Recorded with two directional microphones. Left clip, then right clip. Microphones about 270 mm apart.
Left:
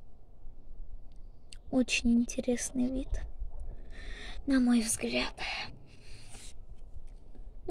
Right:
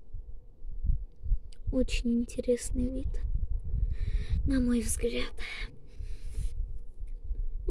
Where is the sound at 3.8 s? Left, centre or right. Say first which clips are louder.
Left 5 dB; centre.